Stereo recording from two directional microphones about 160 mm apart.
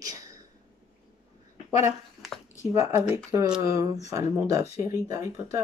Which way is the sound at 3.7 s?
20° right (ahead or behind).